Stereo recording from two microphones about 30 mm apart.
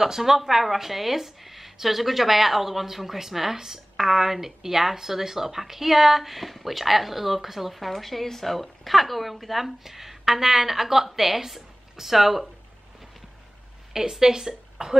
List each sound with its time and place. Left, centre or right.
0.0 s speech: centre
14.2 s speech: centre